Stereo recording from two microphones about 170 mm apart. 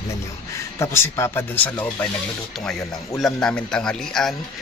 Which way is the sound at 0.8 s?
15° left (ahead or behind).